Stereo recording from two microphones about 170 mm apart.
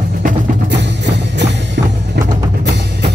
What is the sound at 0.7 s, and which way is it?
Music, 90° right.